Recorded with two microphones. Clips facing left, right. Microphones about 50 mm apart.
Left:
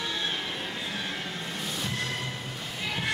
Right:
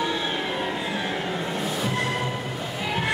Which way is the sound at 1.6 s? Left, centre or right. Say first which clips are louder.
Right 5 dB; centre.